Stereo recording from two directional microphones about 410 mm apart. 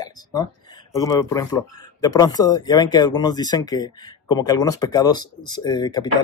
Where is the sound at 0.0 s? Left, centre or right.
Centre.